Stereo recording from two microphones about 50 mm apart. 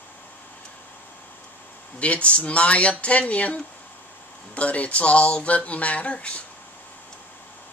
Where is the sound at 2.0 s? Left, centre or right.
Left.